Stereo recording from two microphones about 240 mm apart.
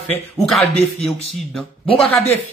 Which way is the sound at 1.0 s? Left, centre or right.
Centre.